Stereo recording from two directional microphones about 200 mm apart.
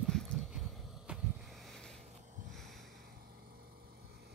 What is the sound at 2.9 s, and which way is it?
Vehicle, 45° right (ahead or behind).